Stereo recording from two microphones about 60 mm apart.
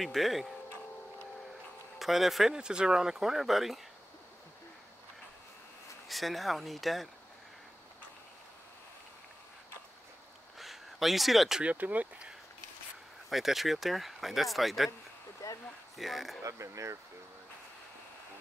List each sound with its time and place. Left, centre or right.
0.0 s speech: centre
2.0 s speech: centre
6.0 s speech: centre
10.6 s a sound: centre
11.6 s speech: right
13.3 s speech: centre
15.4 s a sound: left
16.0 s speech: centre
16.4 s speech: right